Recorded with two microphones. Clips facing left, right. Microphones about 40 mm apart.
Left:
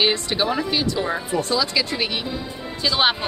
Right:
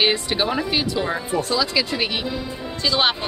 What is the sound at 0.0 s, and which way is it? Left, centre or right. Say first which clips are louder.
Speech: even; centre.